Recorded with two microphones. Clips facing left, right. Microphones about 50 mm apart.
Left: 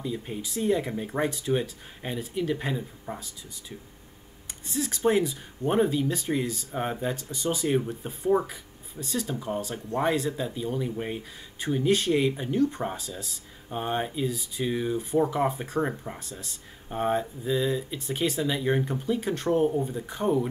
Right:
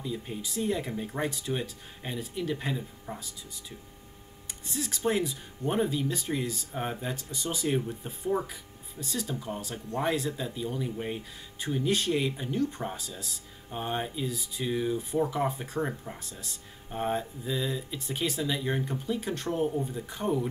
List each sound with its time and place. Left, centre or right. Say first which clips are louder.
0.0 s speech: left 3 dB; centre
4.7 s speech: left 5 dB; centre
9.0 s speech: left 3 dB; centre
15.8 s speech: left 3 dB; centre
16.2 s speech: left 4 dB; centre
16.9 s speech: left 4 dB; centre